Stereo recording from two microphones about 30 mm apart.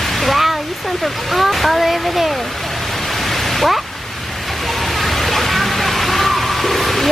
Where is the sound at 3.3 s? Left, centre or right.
Centre.